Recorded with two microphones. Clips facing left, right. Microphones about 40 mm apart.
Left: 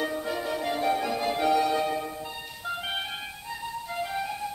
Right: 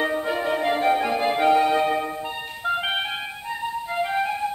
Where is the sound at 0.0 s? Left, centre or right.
Right.